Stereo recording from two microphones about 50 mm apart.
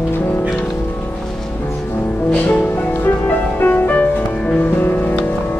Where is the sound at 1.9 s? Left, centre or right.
Left.